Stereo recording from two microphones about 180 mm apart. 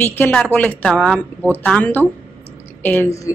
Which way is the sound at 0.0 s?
10° left (ahead or behind).